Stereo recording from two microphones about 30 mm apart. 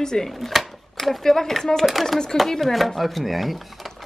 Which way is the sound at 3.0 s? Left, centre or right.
Centre.